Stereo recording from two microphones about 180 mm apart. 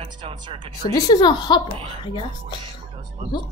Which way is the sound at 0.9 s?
25° left (ahead or behind).